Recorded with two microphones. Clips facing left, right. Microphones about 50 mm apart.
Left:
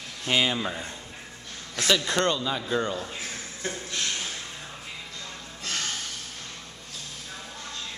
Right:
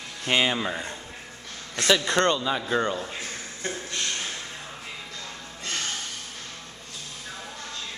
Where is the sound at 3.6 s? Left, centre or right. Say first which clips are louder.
Even; centre.